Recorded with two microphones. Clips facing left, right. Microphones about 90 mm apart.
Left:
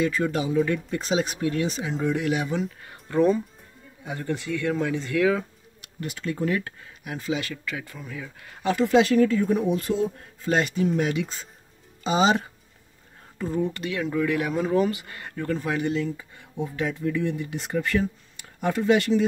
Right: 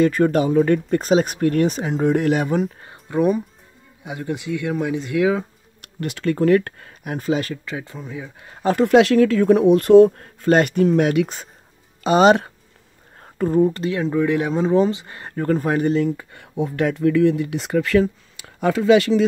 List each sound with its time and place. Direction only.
0.0 s speech: 50° right (ahead or behind)
3.1 s speech: 15° right (ahead or behind)
5.8 s speech: 65° right (ahead or behind); by 8.5 s 25° right (ahead or behind)
8.8 s speech: 75° right (ahead or behind)
13.2 s speech: 50° right (ahead or behind)
16.2 s speech: 70° right (ahead or behind); by 19.2 s 90° right